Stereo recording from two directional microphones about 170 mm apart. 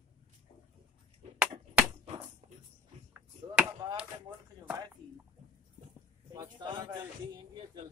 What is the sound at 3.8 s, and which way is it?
Speech, 25° right (ahead or behind).